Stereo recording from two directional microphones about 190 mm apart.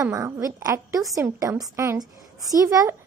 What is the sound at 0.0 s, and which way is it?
A woman's voice, 15° right (ahead or behind).